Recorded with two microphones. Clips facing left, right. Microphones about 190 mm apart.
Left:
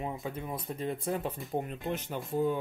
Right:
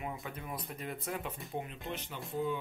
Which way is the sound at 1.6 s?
45° left (ahead or behind).